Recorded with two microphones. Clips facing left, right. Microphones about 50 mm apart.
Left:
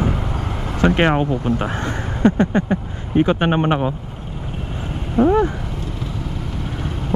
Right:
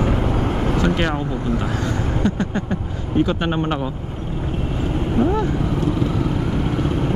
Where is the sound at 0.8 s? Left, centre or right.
Left.